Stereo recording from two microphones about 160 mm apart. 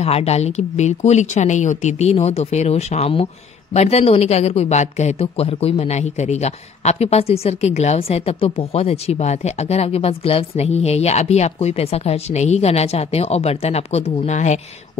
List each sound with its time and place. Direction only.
0.0 s speech: 40° left (ahead or behind)